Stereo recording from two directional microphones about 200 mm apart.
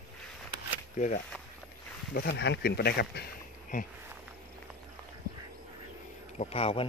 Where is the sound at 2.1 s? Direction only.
55° left (ahead or behind).